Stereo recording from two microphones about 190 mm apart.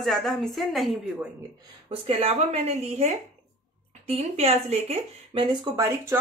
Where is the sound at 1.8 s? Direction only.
30° right (ahead or behind).